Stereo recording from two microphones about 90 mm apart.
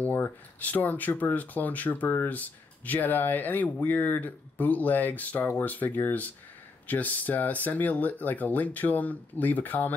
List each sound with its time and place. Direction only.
0.0 s speech: 20° left (ahead or behind)